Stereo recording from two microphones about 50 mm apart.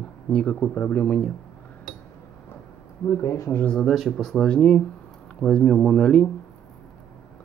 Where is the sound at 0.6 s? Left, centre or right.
Left.